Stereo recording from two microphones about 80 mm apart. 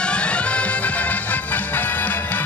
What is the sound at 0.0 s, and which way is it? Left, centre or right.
Music, centre.